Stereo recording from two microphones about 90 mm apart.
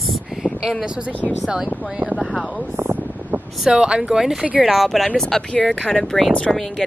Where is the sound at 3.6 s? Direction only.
10° right (ahead or behind).